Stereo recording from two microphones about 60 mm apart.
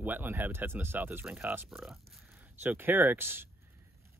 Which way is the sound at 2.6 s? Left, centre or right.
Right.